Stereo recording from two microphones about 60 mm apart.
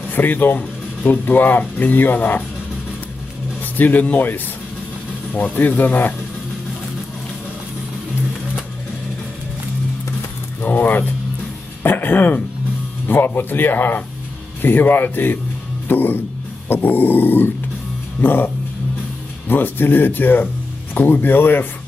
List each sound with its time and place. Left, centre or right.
0.1 s speech: left
3.7 s speech: left
10.6 s a sound: left
11.8 s throat clearing: left
13.1 s speech: left